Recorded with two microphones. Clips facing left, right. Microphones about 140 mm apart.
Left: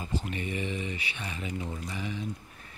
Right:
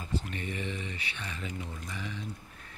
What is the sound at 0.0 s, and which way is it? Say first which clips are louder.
Speech: left 2 dB; 15° left (ahead or behind).